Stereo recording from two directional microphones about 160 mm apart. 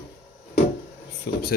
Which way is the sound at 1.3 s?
90° left.